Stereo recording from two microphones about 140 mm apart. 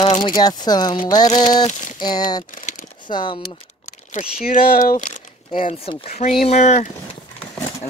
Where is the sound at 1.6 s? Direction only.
65° left (ahead or behind).